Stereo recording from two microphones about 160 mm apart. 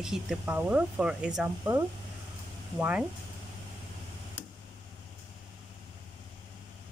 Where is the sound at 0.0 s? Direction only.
5° right (ahead or behind).